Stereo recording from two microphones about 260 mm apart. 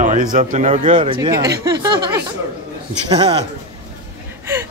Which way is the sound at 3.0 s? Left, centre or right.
Right.